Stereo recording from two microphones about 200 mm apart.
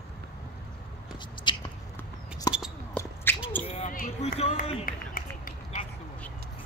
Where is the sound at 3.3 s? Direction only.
10° left (ahead or behind).